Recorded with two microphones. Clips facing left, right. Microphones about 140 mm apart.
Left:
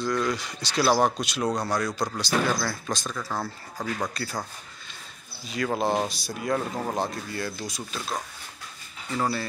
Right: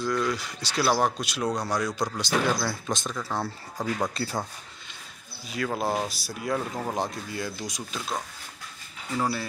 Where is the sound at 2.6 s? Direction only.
20° right (ahead or behind).